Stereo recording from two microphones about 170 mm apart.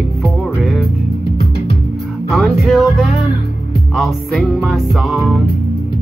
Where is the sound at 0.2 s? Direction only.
Centre (ahead or behind).